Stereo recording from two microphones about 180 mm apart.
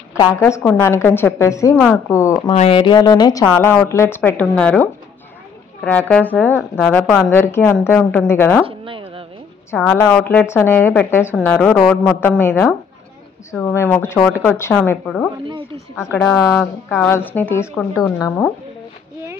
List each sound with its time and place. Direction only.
0.1 s speech: 15° left (ahead or behind)
2.5 s speech: 35° left (ahead or behind); by 4.8 s 10° left (ahead or behind)
5.9 s speech: 5° left (ahead or behind)
8.6 s a sound: 30° right (ahead or behind)
9.7 s a woman's voice: 5° left (ahead or behind)
15.4 s speech: 30° right (ahead or behind)
16.1 s speech: 5° left (ahead or behind)